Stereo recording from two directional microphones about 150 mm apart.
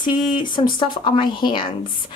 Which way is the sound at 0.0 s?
30° left (ahead or behind).